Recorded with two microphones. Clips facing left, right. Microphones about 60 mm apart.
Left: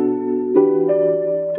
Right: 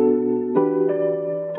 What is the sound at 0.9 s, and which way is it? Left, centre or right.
Music, left.